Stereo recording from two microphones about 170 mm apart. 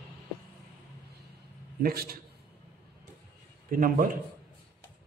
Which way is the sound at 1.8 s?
65° right (ahead or behind).